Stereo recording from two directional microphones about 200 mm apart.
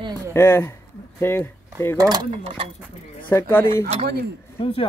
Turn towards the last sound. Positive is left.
turn(degrees=30)  # may be behind; listen again after turning